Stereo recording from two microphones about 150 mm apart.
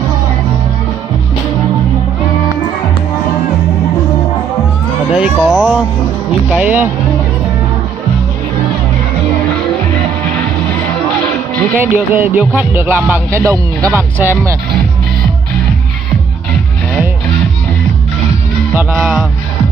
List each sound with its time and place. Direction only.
5.1 s speech: 5° right (ahead or behind)
6.5 s music: 10° right (ahead or behind)
11.7 s music: 10° right (ahead or behind)
18.8 s music: 10° right (ahead or behind)